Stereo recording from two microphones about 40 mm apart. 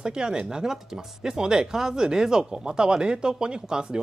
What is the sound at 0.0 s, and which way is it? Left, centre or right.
Speech, centre.